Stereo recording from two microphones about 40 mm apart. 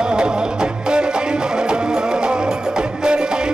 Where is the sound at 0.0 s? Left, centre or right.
Right.